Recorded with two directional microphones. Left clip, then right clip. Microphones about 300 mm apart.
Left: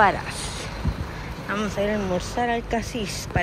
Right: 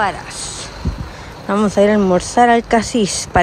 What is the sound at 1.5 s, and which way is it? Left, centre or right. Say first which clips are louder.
Speech: right 10 dB; centre.